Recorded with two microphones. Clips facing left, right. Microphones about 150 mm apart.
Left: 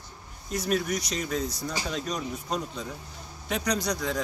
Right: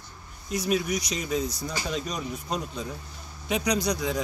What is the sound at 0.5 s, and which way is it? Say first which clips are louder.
Speech: right 1 dB; centre (ahead or behind).